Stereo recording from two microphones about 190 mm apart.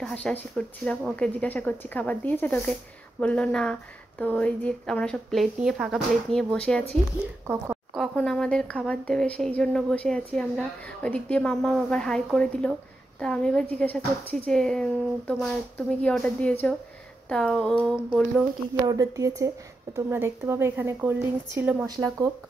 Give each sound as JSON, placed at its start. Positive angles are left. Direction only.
{"t": 0.0, "sound": "speech", "side_deg": 5}
{"t": 7.4, "sound": "a woman's voice", "side_deg": -10}
{"t": 7.9, "sound": "speech", "side_deg": 0}
{"t": 18.9, "sound": "speech", "side_deg": -20}